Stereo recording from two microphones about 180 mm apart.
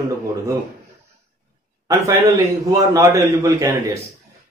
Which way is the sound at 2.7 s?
15° right (ahead or behind).